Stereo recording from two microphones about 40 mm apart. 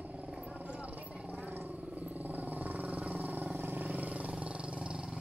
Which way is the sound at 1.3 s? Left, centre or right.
Right.